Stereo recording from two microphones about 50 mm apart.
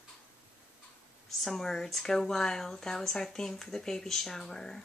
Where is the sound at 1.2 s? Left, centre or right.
Centre.